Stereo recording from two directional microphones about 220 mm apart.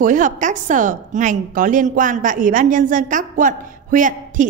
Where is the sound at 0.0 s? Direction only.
35° right (ahead or behind).